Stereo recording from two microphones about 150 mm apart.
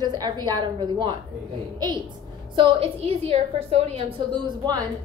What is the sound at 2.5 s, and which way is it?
A woman's voice, 35° right (ahead or behind).